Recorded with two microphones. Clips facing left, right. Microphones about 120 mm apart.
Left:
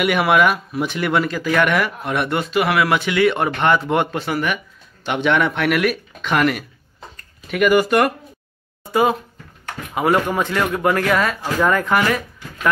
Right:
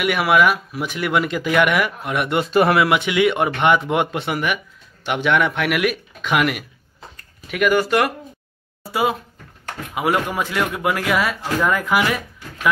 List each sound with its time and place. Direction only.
0.0 s speech: centre (ahead or behind)
2.5 s speech: 30° right (ahead or behind)
2.9 s speech: 15° right (ahead or behind)